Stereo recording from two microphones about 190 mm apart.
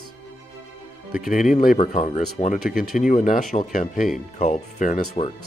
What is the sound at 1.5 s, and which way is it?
Speech, 40° left (ahead or behind).